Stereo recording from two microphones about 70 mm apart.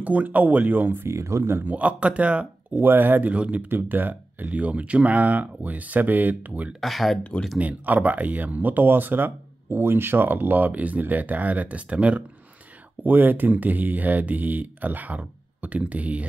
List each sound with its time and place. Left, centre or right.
0.0 s speech: right
1.0 s speech: right
1.7 s speech: right
2.8 s speech: right
3.6 s speech: right
6.8 s speech: centre
7.5 s speech: right